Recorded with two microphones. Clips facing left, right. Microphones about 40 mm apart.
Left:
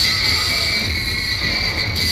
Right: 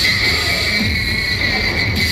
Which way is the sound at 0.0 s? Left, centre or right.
Right.